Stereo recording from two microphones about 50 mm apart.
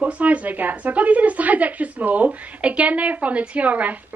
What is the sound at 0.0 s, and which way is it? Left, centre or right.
A woman's voice, right.